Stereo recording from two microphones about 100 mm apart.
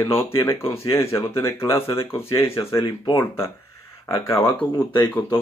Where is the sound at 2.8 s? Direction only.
50° left (ahead or behind).